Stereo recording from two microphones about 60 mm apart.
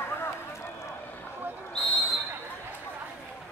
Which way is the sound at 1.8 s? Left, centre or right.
Centre.